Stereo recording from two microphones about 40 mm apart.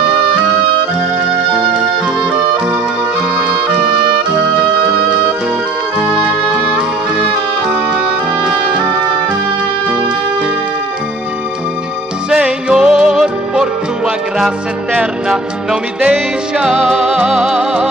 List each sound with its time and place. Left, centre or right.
12.3 s music: right
15.2 s music: centre